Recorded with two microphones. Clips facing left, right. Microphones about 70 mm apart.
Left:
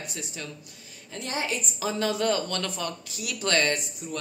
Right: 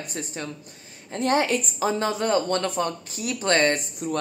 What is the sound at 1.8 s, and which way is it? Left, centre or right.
Speech, right.